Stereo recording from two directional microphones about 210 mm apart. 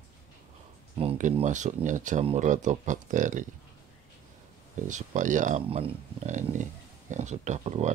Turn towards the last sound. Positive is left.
turn(degrees=-35)  # may be behind; listen again after turning